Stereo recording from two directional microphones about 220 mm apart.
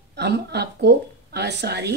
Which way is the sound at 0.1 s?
50° right (ahead or behind).